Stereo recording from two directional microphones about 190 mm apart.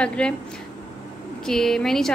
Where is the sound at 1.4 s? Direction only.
Centre (ahead or behind).